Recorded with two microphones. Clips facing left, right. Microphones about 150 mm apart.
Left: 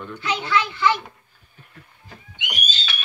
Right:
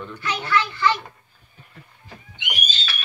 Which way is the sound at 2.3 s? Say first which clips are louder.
Even; 15° left (ahead or behind).